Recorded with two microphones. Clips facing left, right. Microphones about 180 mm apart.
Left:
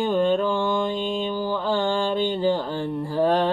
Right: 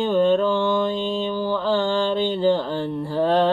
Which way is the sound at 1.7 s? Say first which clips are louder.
Right 2 dB; 45° left (ahead or behind).